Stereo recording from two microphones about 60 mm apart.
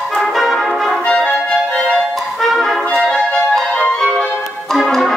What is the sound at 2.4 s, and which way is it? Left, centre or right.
Music, centre.